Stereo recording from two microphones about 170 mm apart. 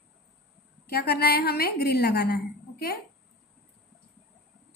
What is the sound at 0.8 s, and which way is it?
A woman's voice, 65° left (ahead or behind).